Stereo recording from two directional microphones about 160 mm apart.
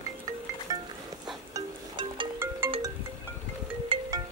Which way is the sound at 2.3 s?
15° right (ahead or behind).